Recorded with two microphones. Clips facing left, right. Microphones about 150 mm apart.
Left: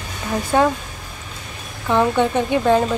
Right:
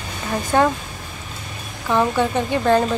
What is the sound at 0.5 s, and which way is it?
Speech, 10° left (ahead or behind).